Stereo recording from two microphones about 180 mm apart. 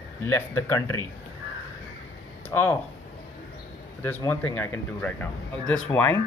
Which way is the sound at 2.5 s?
10° left (ahead or behind).